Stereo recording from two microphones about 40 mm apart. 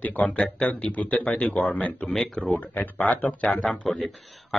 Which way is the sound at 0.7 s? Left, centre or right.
Left.